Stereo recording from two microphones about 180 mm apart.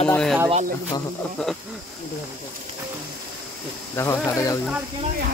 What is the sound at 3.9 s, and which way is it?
Speech, 15° left (ahead or behind).